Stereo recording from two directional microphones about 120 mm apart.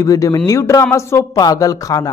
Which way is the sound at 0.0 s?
30° left (ahead or behind).